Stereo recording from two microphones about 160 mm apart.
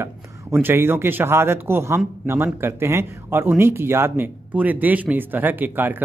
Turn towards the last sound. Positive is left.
turn(degrees=-10)  # may be behind; listen again after turning